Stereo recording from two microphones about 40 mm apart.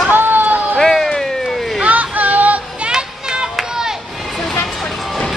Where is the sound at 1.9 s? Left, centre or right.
Right.